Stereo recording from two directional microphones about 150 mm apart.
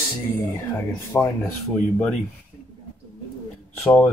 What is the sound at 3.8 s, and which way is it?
Speech, 15° left (ahead or behind).